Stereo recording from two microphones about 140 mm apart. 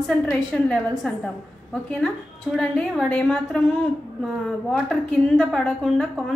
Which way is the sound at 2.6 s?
5° left (ahead or behind).